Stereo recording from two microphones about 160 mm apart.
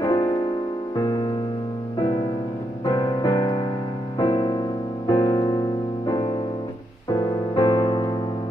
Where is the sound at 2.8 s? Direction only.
25° left (ahead or behind).